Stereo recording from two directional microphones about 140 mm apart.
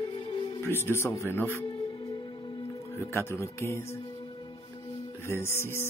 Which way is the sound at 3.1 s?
20° left (ahead or behind).